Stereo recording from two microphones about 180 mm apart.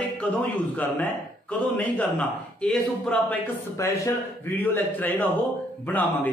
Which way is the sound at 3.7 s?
15° left (ahead or behind).